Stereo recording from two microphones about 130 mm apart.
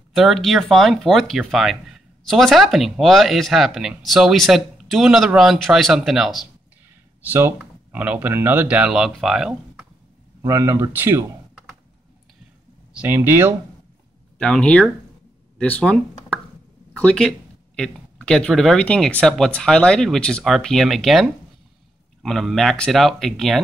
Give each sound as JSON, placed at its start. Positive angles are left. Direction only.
{"t": 0.1, "sound": "speech", "side_deg": 0}
{"t": 7.2, "sound": "speech", "side_deg": -20}
{"t": 10.4, "sound": "speech", "side_deg": -25}
{"t": 12.9, "sound": "speech", "side_deg": -15}
{"t": 14.4, "sound": "speech", "side_deg": 10}